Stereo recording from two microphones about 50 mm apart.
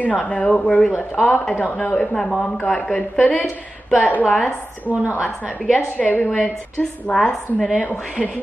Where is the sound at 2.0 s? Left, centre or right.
Centre.